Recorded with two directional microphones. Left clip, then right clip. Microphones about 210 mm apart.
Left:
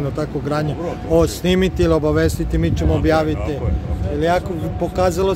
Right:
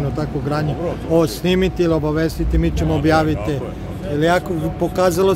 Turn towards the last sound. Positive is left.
turn(degrees=-5)  # may be behind; listen again after turning